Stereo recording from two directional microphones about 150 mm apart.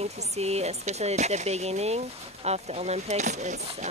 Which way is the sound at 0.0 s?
45° right (ahead or behind).